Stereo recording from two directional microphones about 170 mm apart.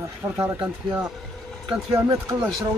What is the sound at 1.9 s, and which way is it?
Speech, 15° right (ahead or behind).